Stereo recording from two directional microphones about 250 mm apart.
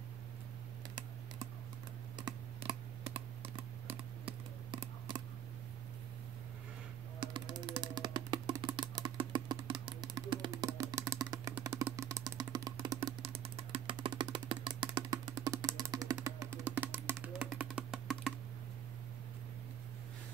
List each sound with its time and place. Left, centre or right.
2.1 s computer keyboard: centre
3.5 s typing: right
7.2 s music: centre